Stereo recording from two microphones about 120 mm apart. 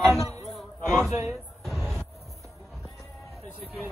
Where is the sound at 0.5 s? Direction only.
Centre (ahead or behind).